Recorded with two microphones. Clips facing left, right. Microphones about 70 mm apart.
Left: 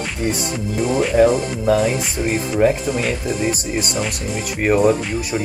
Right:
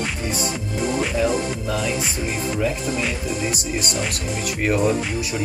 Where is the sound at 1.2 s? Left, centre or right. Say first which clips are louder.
Left 7 dB; left.